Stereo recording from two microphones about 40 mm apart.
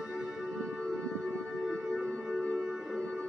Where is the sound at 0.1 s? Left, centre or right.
Centre.